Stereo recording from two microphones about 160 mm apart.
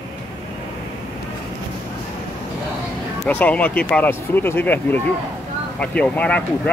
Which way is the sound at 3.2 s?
10° left (ahead or behind).